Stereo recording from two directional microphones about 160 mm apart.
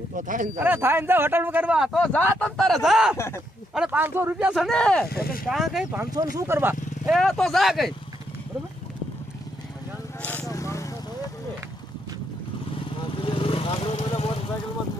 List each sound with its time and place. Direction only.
0.1 s speech: 55° right (ahead or behind)
0.6 s speech: 15° right (ahead or behind)
4.6 s speech: 5° left (ahead or behind)
5.0 s speech: 70° left (ahead or behind)
5.5 s speech: centre (ahead or behind)
6.3 s speech: 15° right (ahead or behind)
7.1 s speech: centre (ahead or behind)
10.2 s vehicle: 10° left (ahead or behind)
13.2 s vehicle: 35° left (ahead or behind)